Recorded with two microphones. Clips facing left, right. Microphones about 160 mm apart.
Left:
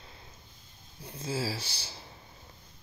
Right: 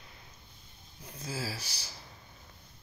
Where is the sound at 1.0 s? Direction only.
30° left (ahead or behind).